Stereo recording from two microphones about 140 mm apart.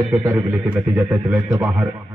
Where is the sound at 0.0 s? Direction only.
25° right (ahead or behind).